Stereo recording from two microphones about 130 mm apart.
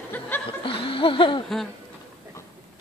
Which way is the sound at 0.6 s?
40° left (ahead or behind).